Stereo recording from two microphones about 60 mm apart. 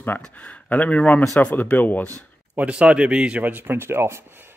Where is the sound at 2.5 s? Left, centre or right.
Right.